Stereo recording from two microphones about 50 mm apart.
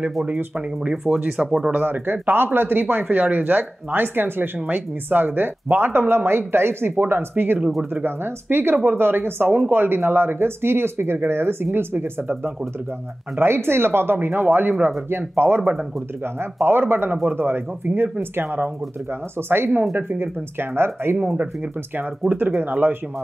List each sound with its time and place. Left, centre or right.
1.0 s speech: centre
1.7 s speech: right
7.0 s speech: right
13.4 s speech: right
20.0 s speech: right
21.9 s speech: right